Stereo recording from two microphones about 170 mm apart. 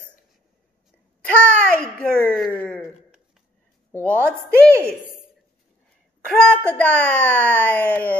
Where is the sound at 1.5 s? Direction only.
5° left (ahead or behind).